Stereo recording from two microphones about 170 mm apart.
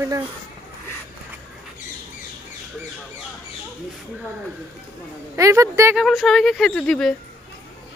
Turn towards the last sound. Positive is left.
turn(degrees=5)  # may be behind; listen again after turning